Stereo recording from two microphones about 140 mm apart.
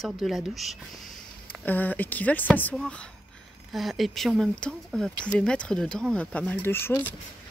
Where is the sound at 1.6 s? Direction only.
10° left (ahead or behind).